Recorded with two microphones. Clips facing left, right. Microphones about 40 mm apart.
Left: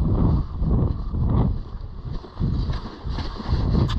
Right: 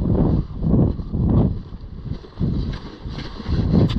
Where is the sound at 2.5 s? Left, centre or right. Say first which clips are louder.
Right 3 dB; right.